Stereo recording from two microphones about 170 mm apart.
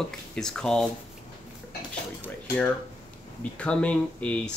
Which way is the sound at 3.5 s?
5° left (ahead or behind).